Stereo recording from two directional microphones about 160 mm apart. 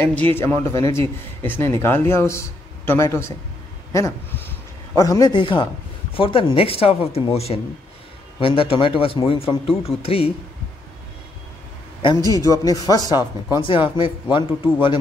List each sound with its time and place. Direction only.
0.0 s a man's voice: 10° left (ahead or behind); by 10.3 s 35° left (ahead or behind)
12.3 s speech: 20° left (ahead or behind)